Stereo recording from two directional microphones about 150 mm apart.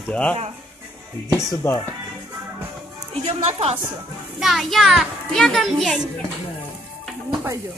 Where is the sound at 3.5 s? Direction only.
45° right (ahead or behind).